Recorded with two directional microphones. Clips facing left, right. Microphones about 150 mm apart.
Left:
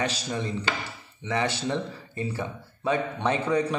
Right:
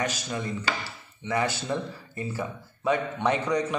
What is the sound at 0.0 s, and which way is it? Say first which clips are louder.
A man's voice: left 1 dB; 30° left (ahead or behind).